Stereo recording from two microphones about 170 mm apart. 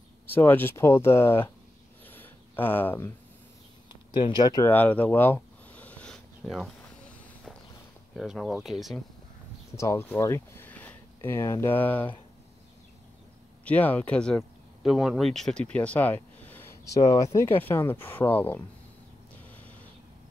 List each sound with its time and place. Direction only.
0.3 s speech: 10° left (ahead or behind)
2.0 s a sound: 10° left (ahead or behind)
3.9 s a sound: 25° left (ahead or behind); by 6.7 s centre (ahead or behind)
8.2 s speech: centre (ahead or behind)
9.8 s speech: 15° left (ahead or behind)
13.7 s speech: 10° left (ahead or behind)